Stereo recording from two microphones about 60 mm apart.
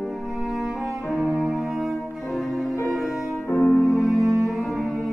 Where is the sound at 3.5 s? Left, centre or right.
Left.